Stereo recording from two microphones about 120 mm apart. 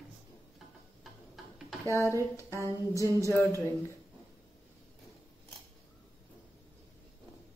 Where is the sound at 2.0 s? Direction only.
25° right (ahead or behind).